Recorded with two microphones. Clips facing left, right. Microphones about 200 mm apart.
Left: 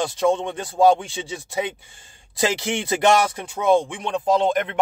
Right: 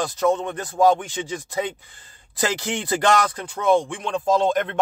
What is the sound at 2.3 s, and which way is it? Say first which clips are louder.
Speech: left 2 dB; 25° left (ahead or behind).